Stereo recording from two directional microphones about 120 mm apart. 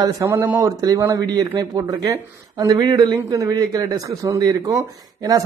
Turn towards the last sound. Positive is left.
turn(degrees=-30)  # may be behind; listen again after turning